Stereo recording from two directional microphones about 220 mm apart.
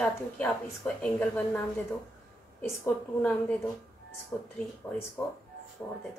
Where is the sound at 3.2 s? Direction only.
10° left (ahead or behind).